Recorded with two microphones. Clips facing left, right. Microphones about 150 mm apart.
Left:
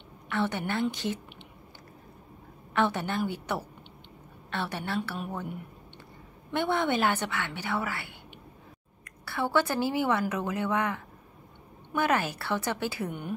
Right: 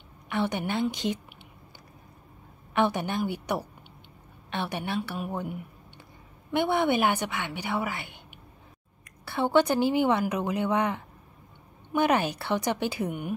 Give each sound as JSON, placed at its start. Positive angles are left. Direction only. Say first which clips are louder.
{"t": 0.3, "sound": "a woman's voice", "louder": "right 1 dB", "side_deg": -15}
{"t": 2.7, "sound": "a woman's voice", "louder": "right 2 dB", "side_deg": -15}
{"t": 6.5, "sound": "a woman's voice", "louder": "right 3 dB", "side_deg": -15}
{"t": 9.2, "sound": "a woman's voice", "louder": "right 4 dB", "side_deg": -20}